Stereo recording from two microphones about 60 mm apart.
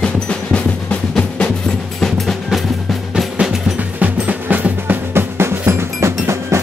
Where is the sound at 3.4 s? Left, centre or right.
Centre.